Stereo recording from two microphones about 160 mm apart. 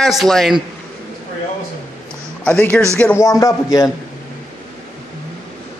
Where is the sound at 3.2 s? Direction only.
20° left (ahead or behind).